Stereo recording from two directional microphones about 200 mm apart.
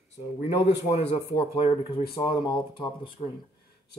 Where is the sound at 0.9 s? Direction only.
35° left (ahead or behind).